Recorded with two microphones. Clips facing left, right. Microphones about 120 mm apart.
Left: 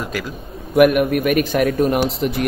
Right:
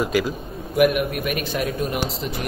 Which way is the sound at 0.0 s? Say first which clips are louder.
Right 5 dB; 10° right (ahead or behind).